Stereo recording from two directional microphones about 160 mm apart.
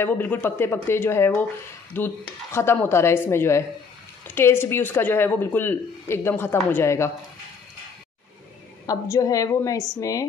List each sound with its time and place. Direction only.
0.0 s speech: 10° left (ahead or behind)
8.8 s a woman's voice: 20° left (ahead or behind)